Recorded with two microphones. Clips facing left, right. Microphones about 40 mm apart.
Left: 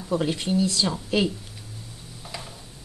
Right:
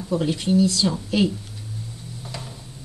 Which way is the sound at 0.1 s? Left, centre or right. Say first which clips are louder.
Right 3 dB; centre.